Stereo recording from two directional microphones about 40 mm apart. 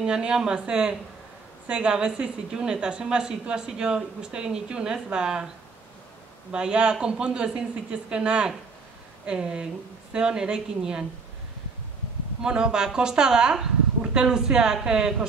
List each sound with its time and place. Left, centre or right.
0.0 s a woman's voice: right
6.5 s a woman's voice: right
12.4 s a woman's voice: right